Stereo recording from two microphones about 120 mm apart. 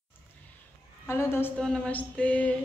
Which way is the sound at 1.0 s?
20° left (ahead or behind).